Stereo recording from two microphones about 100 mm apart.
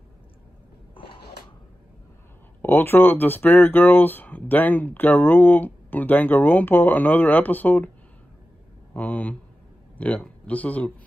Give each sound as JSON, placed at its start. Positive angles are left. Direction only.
{"t": 2.6, "sound": "speech", "side_deg": 20}
{"t": 8.9, "sound": "speech", "side_deg": 15}